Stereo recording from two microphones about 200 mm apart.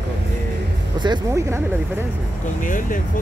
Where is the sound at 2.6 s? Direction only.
40° left (ahead or behind).